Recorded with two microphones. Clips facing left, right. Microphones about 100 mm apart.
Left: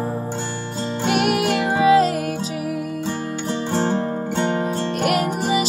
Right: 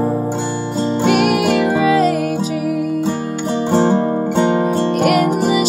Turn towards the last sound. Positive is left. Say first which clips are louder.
# right 7 dB
turn(degrees=-20)  # may be behind; listen again after turning